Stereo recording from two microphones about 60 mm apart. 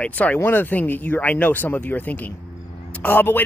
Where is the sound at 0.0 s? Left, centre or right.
Left.